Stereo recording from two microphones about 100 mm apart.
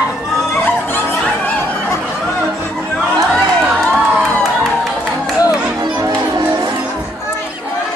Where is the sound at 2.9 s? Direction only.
5° left (ahead or behind).